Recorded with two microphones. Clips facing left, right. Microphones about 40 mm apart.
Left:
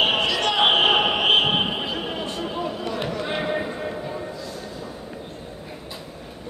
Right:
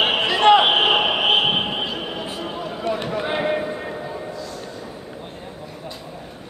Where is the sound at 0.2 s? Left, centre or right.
Right.